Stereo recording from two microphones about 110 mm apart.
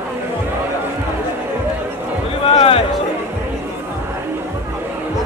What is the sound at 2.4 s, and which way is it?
Music, 60° left (ahead or behind).